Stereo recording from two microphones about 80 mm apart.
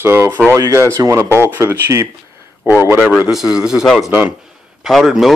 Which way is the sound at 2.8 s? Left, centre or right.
Right.